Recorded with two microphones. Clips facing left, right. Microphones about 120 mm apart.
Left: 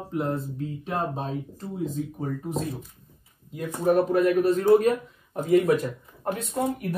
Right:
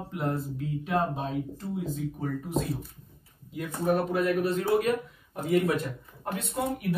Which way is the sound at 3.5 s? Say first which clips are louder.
Left 3 dB; 25° left (ahead or behind).